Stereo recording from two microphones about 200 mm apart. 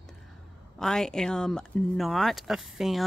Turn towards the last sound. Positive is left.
turn(degrees=0)  # may be behind; listen again after turning